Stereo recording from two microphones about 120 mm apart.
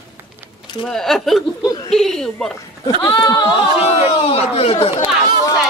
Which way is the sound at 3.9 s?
55° left (ahead or behind).